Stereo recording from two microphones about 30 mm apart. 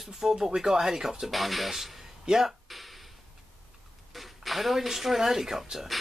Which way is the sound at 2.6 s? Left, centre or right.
Centre.